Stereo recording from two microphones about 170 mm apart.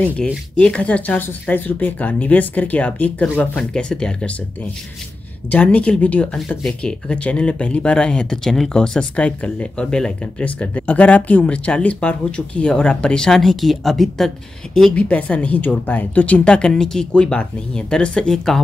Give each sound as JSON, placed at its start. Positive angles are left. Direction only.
{"t": 0.6, "sound": "speech", "side_deg": 5}
{"t": 5.5, "sound": "speech", "side_deg": 10}